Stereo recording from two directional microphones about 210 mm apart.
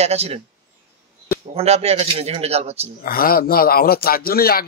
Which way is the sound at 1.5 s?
30° right (ahead or behind).